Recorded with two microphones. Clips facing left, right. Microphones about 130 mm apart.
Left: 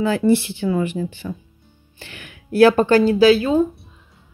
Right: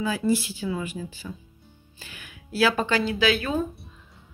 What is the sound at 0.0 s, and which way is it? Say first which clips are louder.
Speech: left 7 dB; 65° left (ahead or behind).